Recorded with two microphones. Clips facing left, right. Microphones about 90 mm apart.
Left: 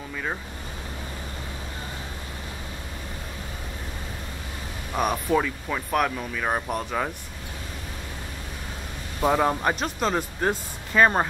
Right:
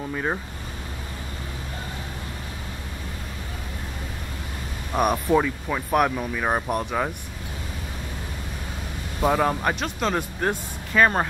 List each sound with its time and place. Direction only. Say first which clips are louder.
0.1 s a sound: right 4 dB; 20° right (ahead or behind)
4.9 s speech: right 3 dB; 10° right (ahead or behind)
9.2 s speech: even; centre (ahead or behind)